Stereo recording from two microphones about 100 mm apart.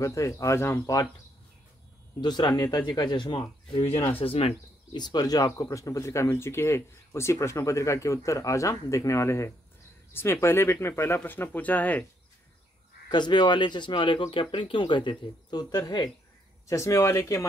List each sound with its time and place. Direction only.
0.0 s speech: 30° left (ahead or behind)
2.2 s speech: 45° left (ahead or behind)
4.1 s speech: 70° left (ahead or behind)
4.9 s speech: 45° left (ahead or behind); by 12.0 s 15° left (ahead or behind)
13.1 s speech: 50° left (ahead or behind)
16.6 s speech: 30° left (ahead or behind)